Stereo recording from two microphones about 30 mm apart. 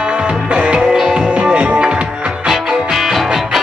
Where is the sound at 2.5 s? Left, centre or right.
Centre.